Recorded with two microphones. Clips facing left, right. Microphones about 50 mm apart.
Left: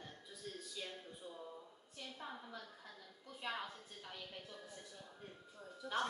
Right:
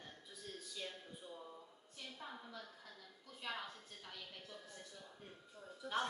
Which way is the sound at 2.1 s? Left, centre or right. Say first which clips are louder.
Left 1 dB; centre.